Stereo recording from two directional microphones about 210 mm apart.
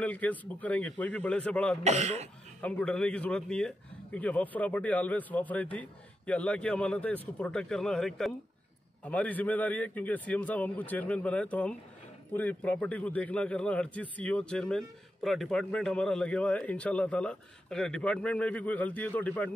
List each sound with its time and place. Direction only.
0.0 s a man's voice: 5° left (ahead or behind)
1.9 s speech: 30° right (ahead or behind)
2.6 s a man's voice: 5° left (ahead or behind)